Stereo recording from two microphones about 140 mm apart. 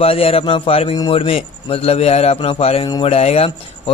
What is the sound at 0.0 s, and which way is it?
A man's voice, 45° left (ahead or behind).